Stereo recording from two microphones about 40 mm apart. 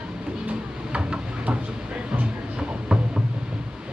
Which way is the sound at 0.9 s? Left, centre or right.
Right.